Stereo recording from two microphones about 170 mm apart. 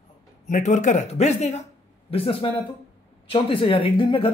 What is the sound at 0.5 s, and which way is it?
Speech, 45° left (ahead or behind).